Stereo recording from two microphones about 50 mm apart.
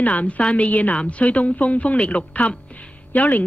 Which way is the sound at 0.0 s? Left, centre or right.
Left.